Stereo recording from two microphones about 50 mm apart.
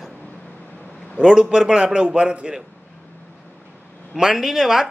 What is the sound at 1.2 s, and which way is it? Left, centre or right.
A man's voice, centre.